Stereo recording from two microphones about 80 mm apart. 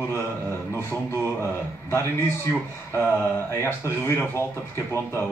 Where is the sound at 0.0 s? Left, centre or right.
Left.